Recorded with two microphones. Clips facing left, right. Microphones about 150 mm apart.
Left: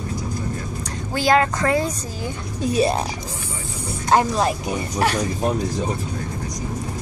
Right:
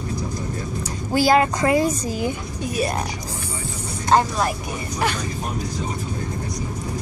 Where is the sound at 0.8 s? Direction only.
5° right (ahead or behind).